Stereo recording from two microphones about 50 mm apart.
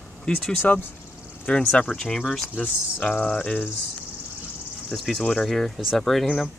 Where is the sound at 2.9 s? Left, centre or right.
Left.